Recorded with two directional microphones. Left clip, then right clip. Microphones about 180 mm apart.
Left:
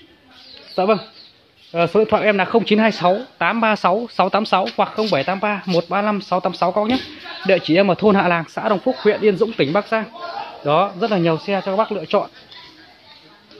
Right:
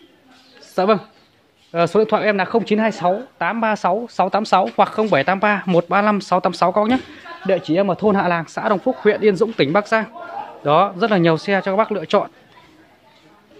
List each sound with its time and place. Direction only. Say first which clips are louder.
0.7 s speech: right 1 dB; 15° right (ahead or behind)
1.7 s speech: even; 5° right (ahead or behind)
2.7 s speech: left 2 dB; 15° left (ahead or behind)
4.5 s speech: right 2 dB; 10° right (ahead or behind)
7.4 s speech: left 3 dB; 10° left (ahead or behind)
8.3 s speech: even; centre (ahead or behind); by 12.3 s 15° right (ahead or behind)